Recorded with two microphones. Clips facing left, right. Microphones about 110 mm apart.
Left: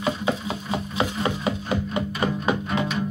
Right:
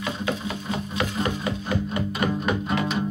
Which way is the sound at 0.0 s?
25° left (ahead or behind).